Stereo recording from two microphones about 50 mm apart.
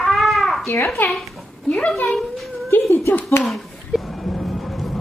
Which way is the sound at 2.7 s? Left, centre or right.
Left.